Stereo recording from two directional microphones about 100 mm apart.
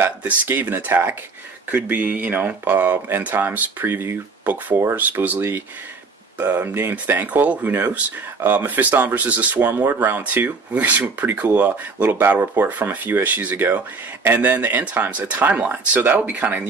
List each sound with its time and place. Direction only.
0.0 s speech: 20° right (ahead or behind)